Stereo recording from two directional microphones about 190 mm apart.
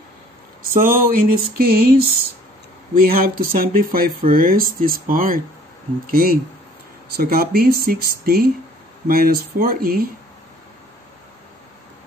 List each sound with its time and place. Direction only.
0.6 s speech: 45° right (ahead or behind)
2.9 s speech: 50° right (ahead or behind)